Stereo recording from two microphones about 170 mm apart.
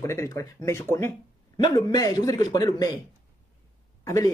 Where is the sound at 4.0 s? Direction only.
20° left (ahead or behind).